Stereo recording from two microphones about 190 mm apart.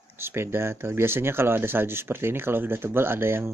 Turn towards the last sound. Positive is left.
turn(degrees=-10)  # may be behind; listen again after turning